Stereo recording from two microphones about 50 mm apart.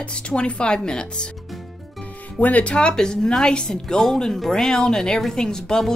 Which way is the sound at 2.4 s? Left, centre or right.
Left.